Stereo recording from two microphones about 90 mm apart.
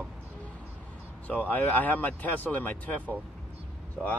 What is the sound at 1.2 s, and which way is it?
Speech, 15° left (ahead or behind).